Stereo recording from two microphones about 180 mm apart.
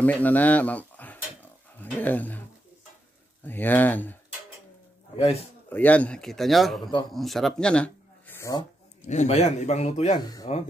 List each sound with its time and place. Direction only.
0.0 s speech: 10° left (ahead or behind)
3.4 s speech: 10° left (ahead or behind)
5.1 s a man's voice: 35° left (ahead or behind)
5.7 s a man's voice: 10° left (ahead or behind)
9.0 s speech: 40° left (ahead or behind)